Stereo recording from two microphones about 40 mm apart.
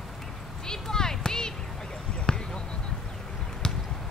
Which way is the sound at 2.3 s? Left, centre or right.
Left.